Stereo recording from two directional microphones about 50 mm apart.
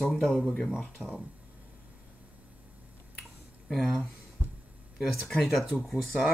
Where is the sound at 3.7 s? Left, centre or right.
Centre.